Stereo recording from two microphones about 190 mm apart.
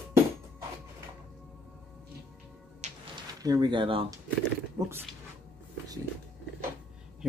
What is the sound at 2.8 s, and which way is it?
Music, 35° right (ahead or behind).